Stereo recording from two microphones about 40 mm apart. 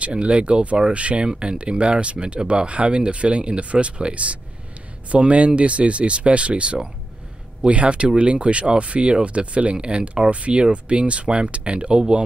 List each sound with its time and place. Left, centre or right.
0.0 s speech: right